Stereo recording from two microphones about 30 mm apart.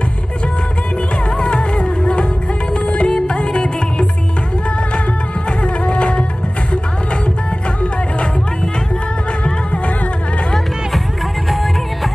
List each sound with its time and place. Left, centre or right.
1.4 s music: left
5.6 s music: left